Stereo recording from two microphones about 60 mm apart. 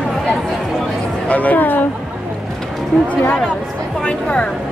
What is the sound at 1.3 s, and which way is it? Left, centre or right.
Speech, left.